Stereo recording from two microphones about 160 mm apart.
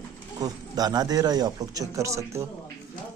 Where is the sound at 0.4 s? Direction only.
25° right (ahead or behind).